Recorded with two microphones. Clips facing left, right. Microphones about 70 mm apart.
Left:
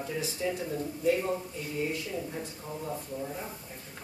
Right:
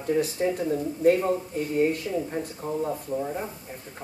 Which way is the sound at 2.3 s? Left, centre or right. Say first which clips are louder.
Right 9 dB; right.